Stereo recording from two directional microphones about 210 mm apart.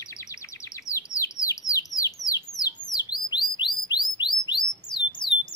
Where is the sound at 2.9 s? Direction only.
20° left (ahead or behind).